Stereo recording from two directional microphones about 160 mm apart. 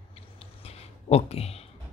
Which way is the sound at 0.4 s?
40° left (ahead or behind).